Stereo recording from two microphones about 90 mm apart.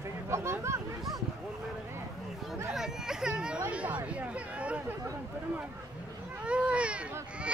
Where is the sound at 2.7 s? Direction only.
5° right (ahead or behind).